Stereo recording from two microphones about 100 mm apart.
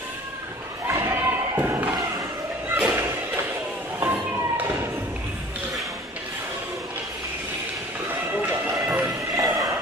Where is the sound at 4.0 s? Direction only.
20° right (ahead or behind).